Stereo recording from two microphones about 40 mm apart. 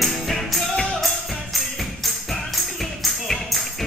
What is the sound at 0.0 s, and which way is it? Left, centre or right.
Music, centre.